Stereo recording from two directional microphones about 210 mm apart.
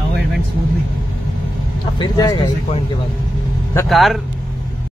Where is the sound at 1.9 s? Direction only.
20° left (ahead or behind).